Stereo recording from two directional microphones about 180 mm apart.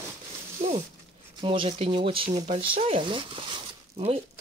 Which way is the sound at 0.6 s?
40° right (ahead or behind).